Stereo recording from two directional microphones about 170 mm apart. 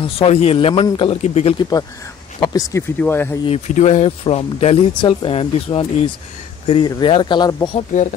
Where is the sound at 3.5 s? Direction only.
40° left (ahead or behind); by 7.6 s 20° left (ahead or behind).